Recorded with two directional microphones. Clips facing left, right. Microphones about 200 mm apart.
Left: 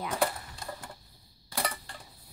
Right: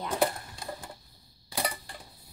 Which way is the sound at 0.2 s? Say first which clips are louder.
Right 2 dB; 15° right (ahead or behind).